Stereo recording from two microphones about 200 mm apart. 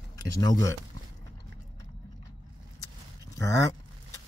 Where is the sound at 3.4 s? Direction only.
15° left (ahead or behind).